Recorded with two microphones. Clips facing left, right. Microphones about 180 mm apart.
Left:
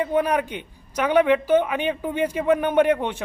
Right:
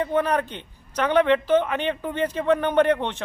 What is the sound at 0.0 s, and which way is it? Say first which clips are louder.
A man's voice: left 1 dB; 10° left (ahead or behind).